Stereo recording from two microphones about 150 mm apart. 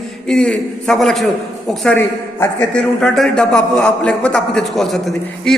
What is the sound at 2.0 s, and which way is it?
A man's voice, 15° left (ahead or behind).